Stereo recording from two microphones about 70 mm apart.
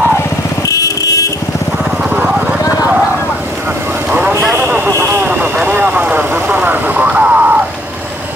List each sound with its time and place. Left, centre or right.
0.7 s vehicle: left
4.6 s vehicle: right
5.0 s a sound: right
5.7 s vehicle: right